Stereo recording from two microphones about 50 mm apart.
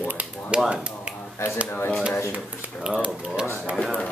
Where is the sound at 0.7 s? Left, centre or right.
Right.